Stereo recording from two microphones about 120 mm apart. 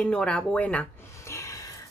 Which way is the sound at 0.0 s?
10° left (ahead or behind).